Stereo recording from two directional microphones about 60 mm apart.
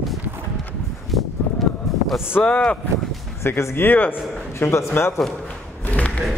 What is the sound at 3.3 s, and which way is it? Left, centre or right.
Speech, left.